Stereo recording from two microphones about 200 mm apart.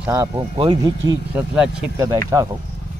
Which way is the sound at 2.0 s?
15° right (ahead or behind).